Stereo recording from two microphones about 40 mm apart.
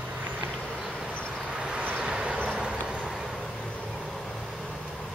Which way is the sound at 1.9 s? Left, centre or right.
Right.